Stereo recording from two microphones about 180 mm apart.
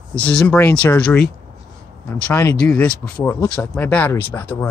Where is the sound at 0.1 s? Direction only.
5° left (ahead or behind).